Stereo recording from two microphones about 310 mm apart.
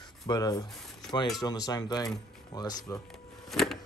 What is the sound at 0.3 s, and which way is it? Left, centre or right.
Speech, centre.